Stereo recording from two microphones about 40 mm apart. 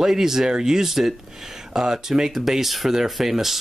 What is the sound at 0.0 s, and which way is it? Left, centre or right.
Speech, centre.